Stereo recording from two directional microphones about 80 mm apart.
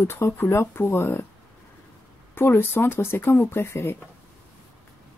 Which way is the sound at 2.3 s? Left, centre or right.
Left.